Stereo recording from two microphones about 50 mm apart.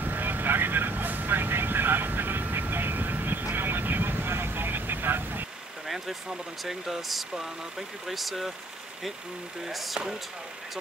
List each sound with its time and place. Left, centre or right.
0.0 s vehicle: right
6.6 s speech: centre
9.7 s speech: centre